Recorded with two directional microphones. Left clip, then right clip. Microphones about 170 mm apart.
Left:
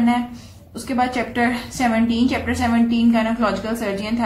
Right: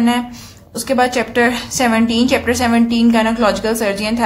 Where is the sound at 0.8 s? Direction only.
40° right (ahead or behind).